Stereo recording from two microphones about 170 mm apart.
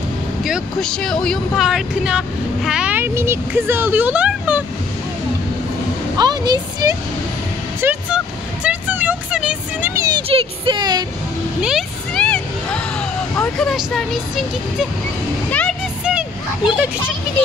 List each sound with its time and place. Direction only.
0.4 s speech: centre (ahead or behind)
6.1 s speech: 25° right (ahead or behind)
7.8 s speech: 10° right (ahead or behind)
8.6 s a sound: 10° right (ahead or behind)
10.2 s speech: 30° right (ahead or behind)
11.6 s vehicle: centre (ahead or behind)
13.6 s speech: centre (ahead or behind)
16.0 s a sound: 5° right (ahead or behind)